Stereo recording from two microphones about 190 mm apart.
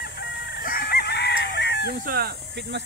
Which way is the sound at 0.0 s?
55° left (ahead or behind).